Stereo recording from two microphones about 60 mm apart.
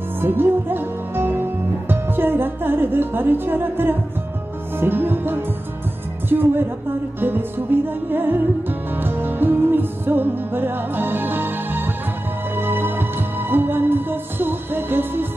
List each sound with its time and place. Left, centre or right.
0.2 s music: right
6.2 s a woman's voice: right
7.2 s music: right